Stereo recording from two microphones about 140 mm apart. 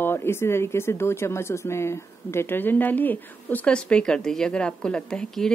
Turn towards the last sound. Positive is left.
turn(degrees=5)  # may be behind; listen again after turning